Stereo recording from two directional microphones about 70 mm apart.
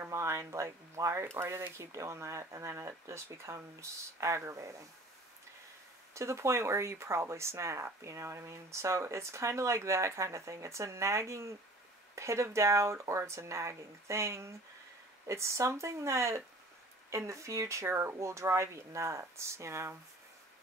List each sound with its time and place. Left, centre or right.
0.0 s speech: right
6.1 s speech: right